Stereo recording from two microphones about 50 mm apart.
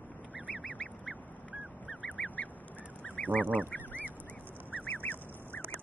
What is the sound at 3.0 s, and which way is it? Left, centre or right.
Duck, left.